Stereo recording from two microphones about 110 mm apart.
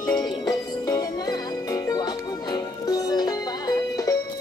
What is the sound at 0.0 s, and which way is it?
Music, 35° left (ahead or behind).